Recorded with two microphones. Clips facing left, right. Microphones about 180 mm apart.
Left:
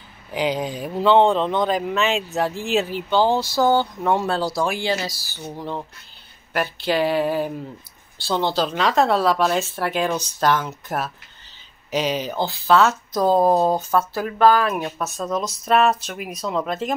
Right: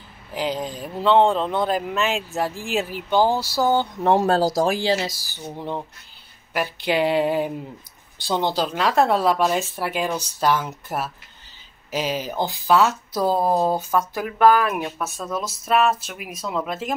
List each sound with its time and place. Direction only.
0.3 s speech: centre (ahead or behind)
4.0 s speech: 40° right (ahead or behind)
5.1 s speech: 15° right (ahead or behind)